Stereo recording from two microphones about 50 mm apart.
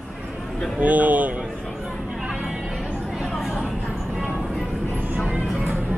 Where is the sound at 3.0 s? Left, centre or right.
Centre.